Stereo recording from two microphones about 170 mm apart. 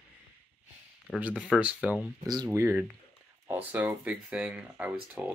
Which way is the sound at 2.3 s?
20° right (ahead or behind).